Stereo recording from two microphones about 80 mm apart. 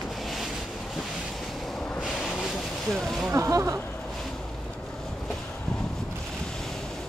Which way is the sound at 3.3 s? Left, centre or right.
Right.